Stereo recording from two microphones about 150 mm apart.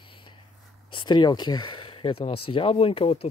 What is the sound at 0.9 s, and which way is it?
Speech, 30° left (ahead or behind).